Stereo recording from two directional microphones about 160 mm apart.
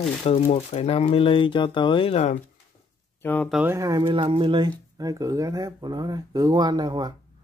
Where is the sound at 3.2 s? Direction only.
10° left (ahead or behind).